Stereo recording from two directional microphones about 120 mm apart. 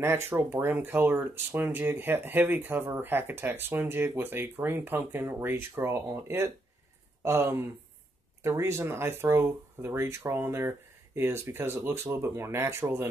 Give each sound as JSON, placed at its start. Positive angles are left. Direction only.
{"t": 0.0, "sound": "speech", "side_deg": -20}